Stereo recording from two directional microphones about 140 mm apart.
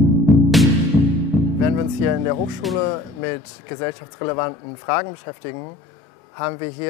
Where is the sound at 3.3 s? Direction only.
25° left (ahead or behind).